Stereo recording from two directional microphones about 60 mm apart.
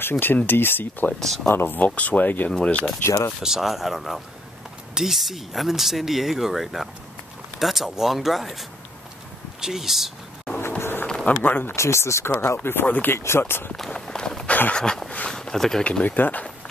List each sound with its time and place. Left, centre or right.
0.0 s speech: left
1.2 s speech: centre
1.5 s speech: left
1.8 s speech: left
2.5 s speech: centre
3.4 s speech: centre
10.8 s a sound: left
11.2 s speech: left
11.7 s speech: left
12.6 s speech: left
13.7 s run: centre
14.7 s speech: centre
15.8 s speech: left